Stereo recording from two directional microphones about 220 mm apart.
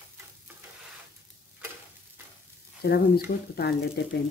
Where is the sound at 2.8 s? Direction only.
45° left (ahead or behind).